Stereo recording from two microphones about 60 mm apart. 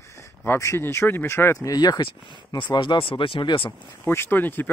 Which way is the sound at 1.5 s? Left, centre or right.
Left.